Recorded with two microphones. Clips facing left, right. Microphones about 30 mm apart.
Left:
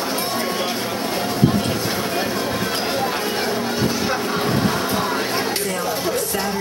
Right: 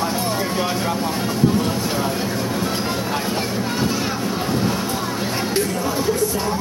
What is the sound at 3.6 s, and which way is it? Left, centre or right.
Music, centre.